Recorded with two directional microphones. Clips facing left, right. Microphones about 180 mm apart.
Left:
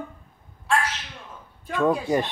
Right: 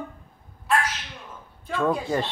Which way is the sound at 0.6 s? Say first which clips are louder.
Even; centre (ahead or behind).